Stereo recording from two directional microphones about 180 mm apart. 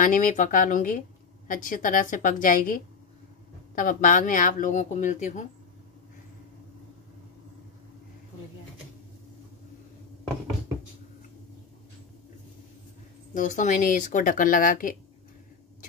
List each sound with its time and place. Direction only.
0.0 s speech: 45° left (ahead or behind)
13.3 s speech: 45° left (ahead or behind)